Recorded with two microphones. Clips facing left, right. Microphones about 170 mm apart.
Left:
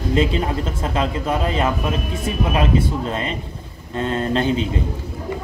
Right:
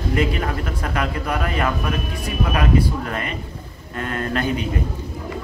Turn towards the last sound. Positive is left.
turn(degrees=25)  # may be behind; listen again after turning